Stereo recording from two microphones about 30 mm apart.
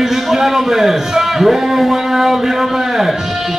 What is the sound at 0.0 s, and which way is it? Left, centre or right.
A man's voice, centre.